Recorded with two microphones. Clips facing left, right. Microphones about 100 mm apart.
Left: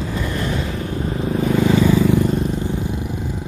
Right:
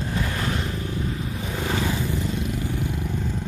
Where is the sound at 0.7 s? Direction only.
50° left (ahead or behind).